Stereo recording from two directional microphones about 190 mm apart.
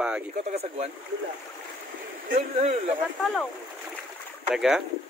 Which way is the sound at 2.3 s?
45° right (ahead or behind).